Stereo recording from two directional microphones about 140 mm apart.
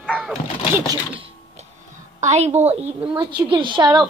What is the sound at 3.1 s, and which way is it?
Speech, 35° right (ahead or behind).